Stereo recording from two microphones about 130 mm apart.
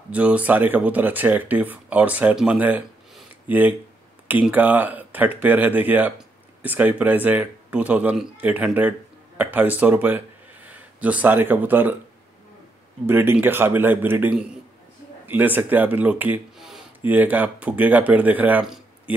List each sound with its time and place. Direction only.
0.1 s speech: 10° right (ahead or behind)
13.0 s speech: 15° right (ahead or behind)
16.5 s a sound: centre (ahead or behind)
17.0 s speech: 15° right (ahead or behind)